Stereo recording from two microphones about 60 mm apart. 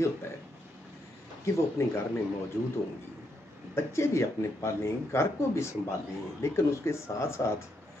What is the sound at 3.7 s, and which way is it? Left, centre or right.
Speech, left.